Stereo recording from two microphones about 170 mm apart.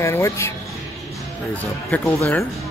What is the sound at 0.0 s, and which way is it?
Speech, 15° left (ahead or behind).